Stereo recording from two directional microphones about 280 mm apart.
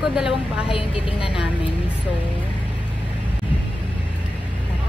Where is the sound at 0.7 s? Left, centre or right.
Centre.